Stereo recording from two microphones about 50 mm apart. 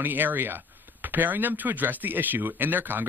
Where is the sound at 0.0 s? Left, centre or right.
Right.